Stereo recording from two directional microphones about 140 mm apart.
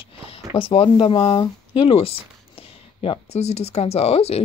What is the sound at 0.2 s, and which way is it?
Speech, 40° left (ahead or behind).